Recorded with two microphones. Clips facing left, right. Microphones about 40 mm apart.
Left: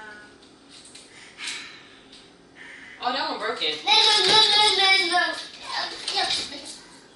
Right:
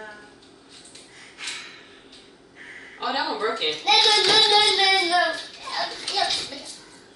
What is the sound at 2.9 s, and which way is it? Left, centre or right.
Hands, centre.